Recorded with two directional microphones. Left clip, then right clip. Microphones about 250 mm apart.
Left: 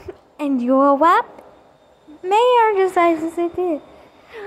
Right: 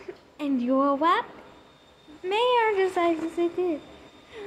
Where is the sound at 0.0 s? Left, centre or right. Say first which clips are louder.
Left 7 dB; centre.